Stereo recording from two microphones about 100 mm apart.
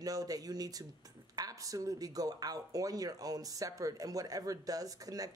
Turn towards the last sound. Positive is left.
turn(degrees=-35)  # may be behind; listen again after turning